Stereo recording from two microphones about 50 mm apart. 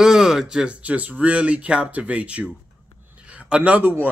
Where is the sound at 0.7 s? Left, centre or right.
Right.